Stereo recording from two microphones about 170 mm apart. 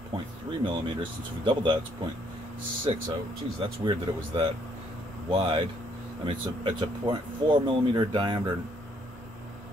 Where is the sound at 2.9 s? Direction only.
35° right (ahead or behind).